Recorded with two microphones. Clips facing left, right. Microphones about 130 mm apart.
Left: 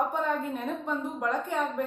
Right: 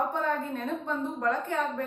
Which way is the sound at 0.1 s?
15° left (ahead or behind).